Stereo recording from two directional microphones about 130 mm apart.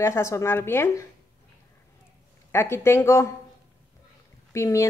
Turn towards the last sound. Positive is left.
turn(degrees=20)  # may be behind; listen again after turning